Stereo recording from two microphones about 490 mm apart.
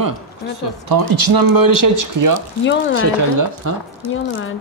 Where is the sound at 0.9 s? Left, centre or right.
Right.